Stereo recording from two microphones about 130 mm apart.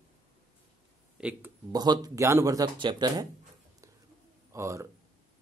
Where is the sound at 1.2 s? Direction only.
10° right (ahead or behind).